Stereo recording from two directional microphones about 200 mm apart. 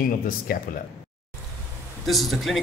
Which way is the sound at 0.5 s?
45° left (ahead or behind).